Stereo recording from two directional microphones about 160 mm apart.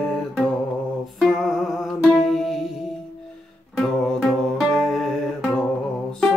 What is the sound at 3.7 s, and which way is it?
Music, 5° left (ahead or behind).